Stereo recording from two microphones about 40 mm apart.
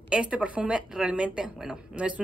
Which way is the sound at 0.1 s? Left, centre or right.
Right.